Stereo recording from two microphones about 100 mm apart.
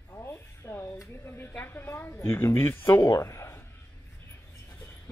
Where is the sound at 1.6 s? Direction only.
25° left (ahead or behind).